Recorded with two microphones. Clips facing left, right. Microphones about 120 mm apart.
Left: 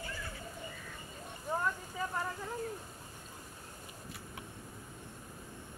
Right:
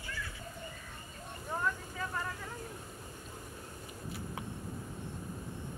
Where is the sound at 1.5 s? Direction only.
15° left (ahead or behind).